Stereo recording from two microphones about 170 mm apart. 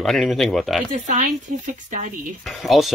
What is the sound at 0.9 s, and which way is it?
Speech, 45° right (ahead or behind).